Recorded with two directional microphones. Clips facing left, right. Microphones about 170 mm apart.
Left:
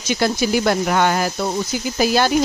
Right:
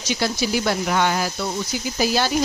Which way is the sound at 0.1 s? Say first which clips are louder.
Left 4 dB; 50° left (ahead or behind).